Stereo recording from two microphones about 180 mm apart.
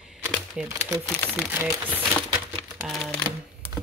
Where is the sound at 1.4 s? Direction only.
10° right (ahead or behind).